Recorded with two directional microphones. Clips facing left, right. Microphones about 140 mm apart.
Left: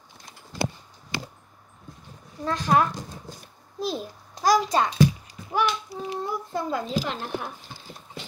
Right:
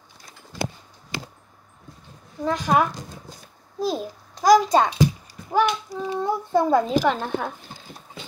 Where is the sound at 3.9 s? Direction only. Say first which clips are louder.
Right 3 dB; 15° right (ahead or behind).